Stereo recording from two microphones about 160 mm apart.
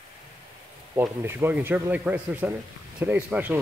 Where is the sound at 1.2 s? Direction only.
15° right (ahead or behind).